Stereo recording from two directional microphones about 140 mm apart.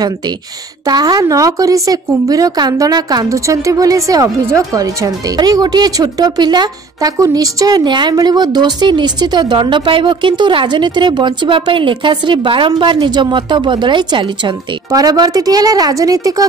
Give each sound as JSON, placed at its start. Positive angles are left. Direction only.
{"t": 0.8, "sound": "a woman's voice", "side_deg": -30}